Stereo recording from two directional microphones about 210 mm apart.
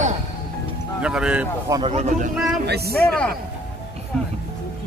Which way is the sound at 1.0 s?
5° right (ahead or behind).